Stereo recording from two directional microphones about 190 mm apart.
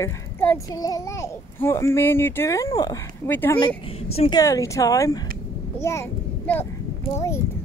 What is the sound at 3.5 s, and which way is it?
Speech, 25° left (ahead or behind).